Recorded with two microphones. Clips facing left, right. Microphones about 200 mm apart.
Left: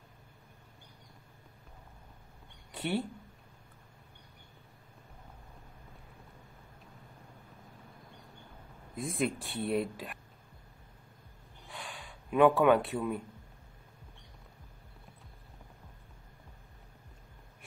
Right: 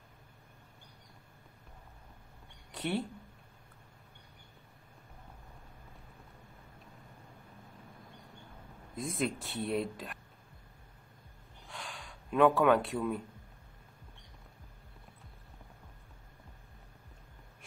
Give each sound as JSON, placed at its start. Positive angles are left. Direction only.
{"t": 2.7, "sound": "a sound", "side_deg": 0}
{"t": 8.9, "sound": "speech", "side_deg": 0}
{"t": 11.6, "sound": "gasp", "side_deg": 0}